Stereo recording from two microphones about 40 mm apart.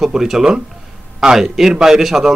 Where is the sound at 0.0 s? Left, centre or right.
Centre.